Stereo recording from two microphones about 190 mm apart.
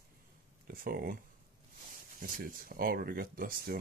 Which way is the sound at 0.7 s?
50° right (ahead or behind).